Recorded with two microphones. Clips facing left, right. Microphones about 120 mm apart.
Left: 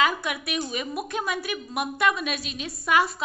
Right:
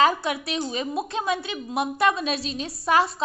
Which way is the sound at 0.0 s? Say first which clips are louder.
Right 4 dB; 30° right (ahead or behind).